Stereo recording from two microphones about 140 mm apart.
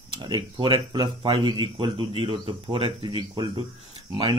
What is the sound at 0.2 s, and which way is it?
Speech, 35° right (ahead or behind).